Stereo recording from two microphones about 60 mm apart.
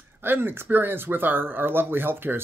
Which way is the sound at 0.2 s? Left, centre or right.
Right.